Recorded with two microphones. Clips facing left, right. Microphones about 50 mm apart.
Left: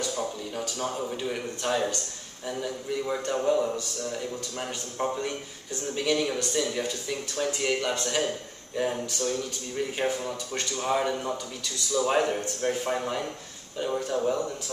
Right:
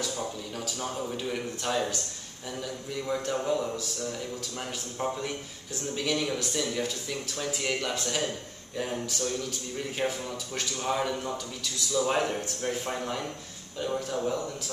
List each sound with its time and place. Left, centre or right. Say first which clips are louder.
0.7 s a man's voice: left 1 dB; centre